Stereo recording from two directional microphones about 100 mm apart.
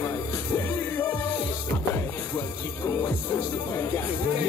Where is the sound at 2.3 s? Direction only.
25° left (ahead or behind).